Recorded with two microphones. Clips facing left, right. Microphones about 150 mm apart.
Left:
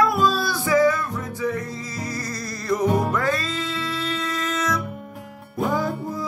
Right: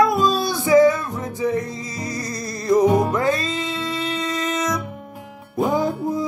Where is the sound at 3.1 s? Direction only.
20° right (ahead or behind).